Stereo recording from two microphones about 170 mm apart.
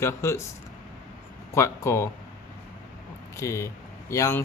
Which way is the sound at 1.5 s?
15° left (ahead or behind).